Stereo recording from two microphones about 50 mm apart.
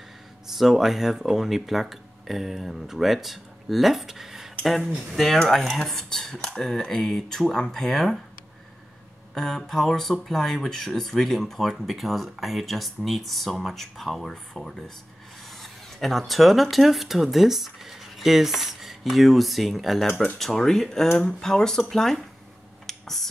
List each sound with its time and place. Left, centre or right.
0.5 s speech: centre
9.3 s speech: centre
22.8 s finger snapping: centre